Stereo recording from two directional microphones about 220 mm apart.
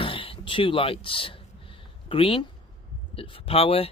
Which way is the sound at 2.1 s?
25° left (ahead or behind).